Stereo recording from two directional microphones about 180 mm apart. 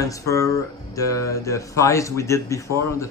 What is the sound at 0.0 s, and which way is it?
Speech, 20° left (ahead or behind).